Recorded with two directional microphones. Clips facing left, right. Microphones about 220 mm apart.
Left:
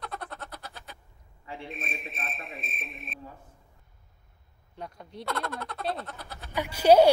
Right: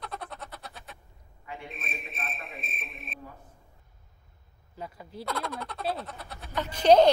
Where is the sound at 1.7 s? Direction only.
Centre (ahead or behind).